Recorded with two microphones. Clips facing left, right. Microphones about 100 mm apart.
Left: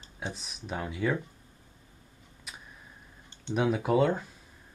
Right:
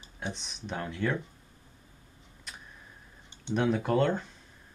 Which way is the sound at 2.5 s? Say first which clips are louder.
Even; 5° left (ahead or behind).